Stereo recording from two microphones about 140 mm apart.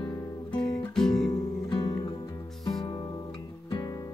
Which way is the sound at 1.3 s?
25° left (ahead or behind).